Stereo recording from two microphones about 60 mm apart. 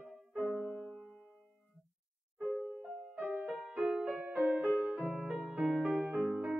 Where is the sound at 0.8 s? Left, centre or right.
Centre.